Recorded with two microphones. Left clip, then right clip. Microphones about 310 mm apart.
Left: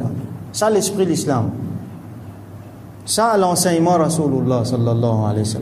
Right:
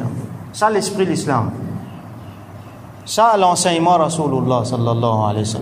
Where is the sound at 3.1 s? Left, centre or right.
Centre.